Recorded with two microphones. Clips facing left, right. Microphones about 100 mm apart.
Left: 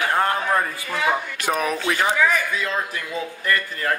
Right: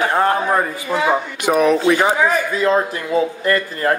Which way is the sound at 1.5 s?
10° right (ahead or behind).